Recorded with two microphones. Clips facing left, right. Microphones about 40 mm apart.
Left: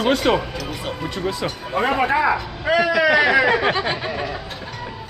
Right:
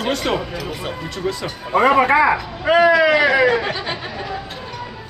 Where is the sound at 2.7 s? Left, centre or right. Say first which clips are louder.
Right 5 dB; right.